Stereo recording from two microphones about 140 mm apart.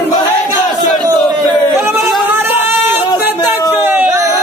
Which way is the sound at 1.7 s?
15° right (ahead or behind).